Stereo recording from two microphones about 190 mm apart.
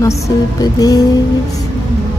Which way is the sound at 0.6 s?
20° left (ahead or behind).